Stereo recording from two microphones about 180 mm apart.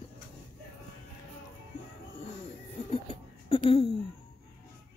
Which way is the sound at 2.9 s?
30° left (ahead or behind).